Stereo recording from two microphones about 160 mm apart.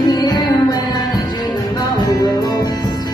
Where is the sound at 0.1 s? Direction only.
25° left (ahead or behind).